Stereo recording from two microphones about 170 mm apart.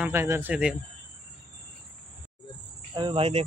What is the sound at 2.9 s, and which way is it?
Speech, 30° right (ahead or behind).